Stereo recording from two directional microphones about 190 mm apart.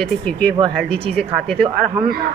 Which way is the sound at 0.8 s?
60° right (ahead or behind).